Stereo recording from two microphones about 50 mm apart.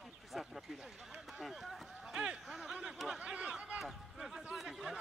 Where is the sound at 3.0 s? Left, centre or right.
Right.